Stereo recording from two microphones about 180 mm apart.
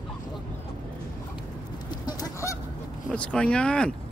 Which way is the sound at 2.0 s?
20° left (ahead or behind).